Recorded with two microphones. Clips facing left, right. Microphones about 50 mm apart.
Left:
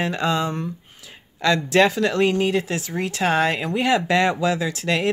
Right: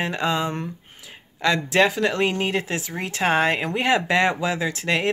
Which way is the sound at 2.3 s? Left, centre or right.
Right.